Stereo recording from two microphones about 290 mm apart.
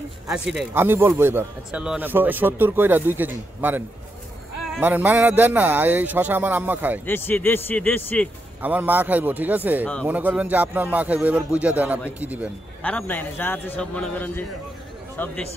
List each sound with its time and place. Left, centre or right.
0.3 s a man's voice: centre
7.1 s speech: centre
8.6 s a man's voice: centre
12.8 s a man's voice: centre